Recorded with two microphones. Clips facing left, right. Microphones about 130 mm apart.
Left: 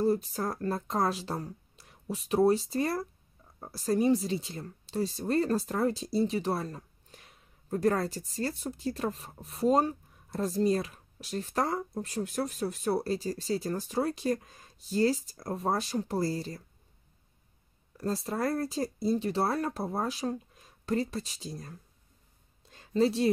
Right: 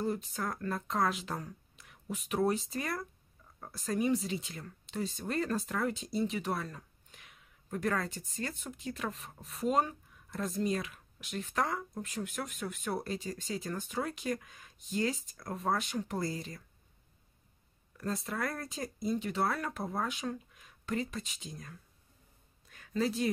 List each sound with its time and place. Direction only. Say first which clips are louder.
0.0 s speech: left 7 dB; 35° left (ahead or behind)
17.9 s speech: left 4 dB; 30° left (ahead or behind)
22.7 s a sound: left 6 dB; 30° left (ahead or behind)